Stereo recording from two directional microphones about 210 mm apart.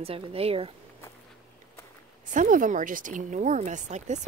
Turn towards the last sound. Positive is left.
turn(degrees=-35)  # may be behind; listen again after turning